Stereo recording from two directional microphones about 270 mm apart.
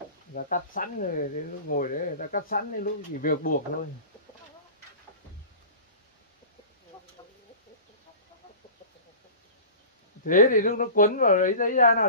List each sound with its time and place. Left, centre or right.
0.3 s speech: left
10.2 s speech: left